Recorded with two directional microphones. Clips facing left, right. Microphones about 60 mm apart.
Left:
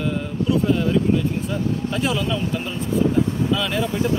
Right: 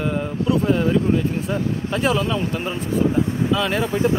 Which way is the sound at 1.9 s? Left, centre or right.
Right.